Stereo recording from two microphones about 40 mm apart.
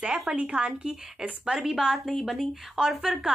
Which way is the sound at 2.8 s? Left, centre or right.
Right.